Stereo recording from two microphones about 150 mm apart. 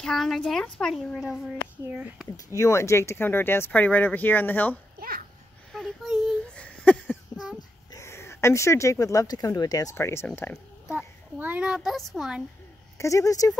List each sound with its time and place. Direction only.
0.0 s a child's voice: centre (ahead or behind)
2.3 s speech: 20° left (ahead or behind)
5.7 s a sound: centre (ahead or behind)
7.9 s speech: 20° left (ahead or behind)
10.5 s a child's voice: 5° right (ahead or behind)
12.9 s speech: 20° left (ahead or behind)